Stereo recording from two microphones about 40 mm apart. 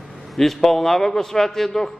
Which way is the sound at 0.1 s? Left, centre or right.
Centre.